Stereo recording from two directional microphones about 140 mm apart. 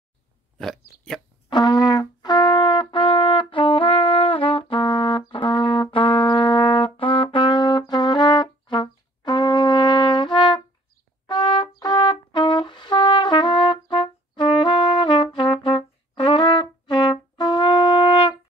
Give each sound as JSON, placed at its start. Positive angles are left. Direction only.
{"t": 0.6, "sound": "speech", "side_deg": 0}
{"t": 1.5, "sound": "music", "side_deg": 30}
{"t": 11.2, "sound": "trumpet", "side_deg": 30}
{"t": 15.3, "sound": "brass instrument", "side_deg": 35}